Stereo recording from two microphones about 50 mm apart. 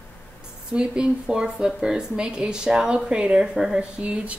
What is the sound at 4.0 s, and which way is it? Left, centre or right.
Speech, right.